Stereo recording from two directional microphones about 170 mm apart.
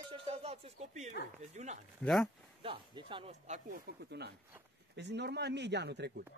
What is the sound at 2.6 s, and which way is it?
Speech, 30° right (ahead or behind).